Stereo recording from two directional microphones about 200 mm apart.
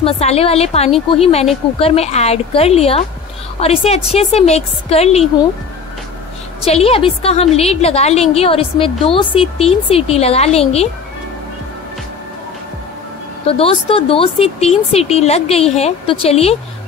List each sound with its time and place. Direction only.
0.0 s a woman's voice: 30° left (ahead or behind)
6.6 s a woman's voice: 30° left (ahead or behind)
13.5 s speech: 30° left (ahead or behind)